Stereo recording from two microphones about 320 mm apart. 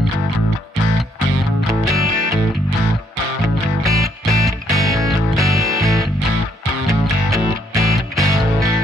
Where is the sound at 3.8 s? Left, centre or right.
Centre.